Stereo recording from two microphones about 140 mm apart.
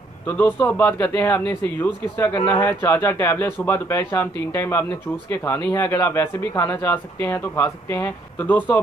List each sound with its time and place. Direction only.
0.3 s speech: 15° left (ahead or behind)
2.3 s speech: 30° left (ahead or behind)
2.6 s speech: 15° left (ahead or behind)